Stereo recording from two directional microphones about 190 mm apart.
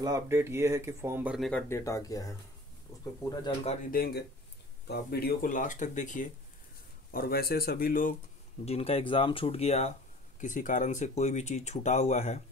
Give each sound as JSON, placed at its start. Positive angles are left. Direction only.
{"t": 0.0, "sound": "speech", "side_deg": -15}
{"t": 1.5, "sound": "speech", "side_deg": 15}
{"t": 3.9, "sound": "speech", "side_deg": 55}
{"t": 7.1, "sound": "speech", "side_deg": 50}
{"t": 8.6, "sound": "speech", "side_deg": 30}